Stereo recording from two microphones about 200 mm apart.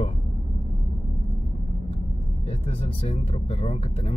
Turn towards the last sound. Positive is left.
turn(degrees=25)  # may be behind; listen again after turning